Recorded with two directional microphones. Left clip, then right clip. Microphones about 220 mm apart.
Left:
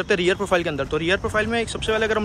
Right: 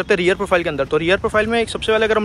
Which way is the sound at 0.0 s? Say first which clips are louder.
Right 4 dB; 10° left (ahead or behind).